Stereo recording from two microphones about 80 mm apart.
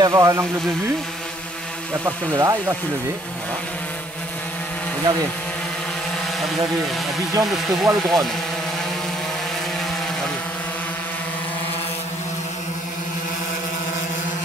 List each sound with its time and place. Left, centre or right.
0.0 s speech: right
2.0 s speech: right
5.1 s speech: right
7.8 s speech: centre